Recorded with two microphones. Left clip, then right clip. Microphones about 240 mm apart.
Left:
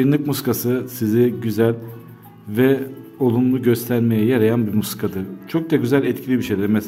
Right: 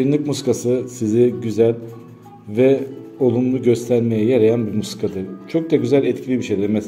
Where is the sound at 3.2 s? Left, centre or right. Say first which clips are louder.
Right 1 dB; left.